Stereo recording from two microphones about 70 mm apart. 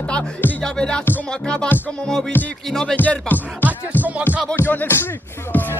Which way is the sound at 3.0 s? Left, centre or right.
Left.